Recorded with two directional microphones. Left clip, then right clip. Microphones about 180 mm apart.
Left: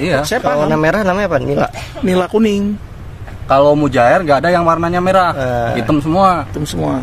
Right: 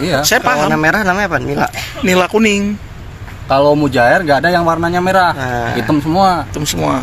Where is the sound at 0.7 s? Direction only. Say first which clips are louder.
Right 1 dB; 90° left.